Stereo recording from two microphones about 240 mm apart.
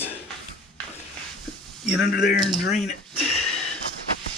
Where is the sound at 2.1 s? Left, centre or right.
Left.